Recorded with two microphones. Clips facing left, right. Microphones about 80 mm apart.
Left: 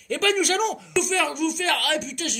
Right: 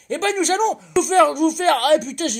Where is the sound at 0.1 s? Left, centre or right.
Right.